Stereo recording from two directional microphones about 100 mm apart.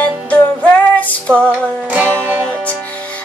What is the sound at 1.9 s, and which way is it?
Music, 20° right (ahead or behind).